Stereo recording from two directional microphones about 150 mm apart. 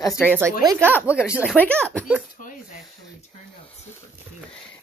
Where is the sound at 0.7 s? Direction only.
15° right (ahead or behind).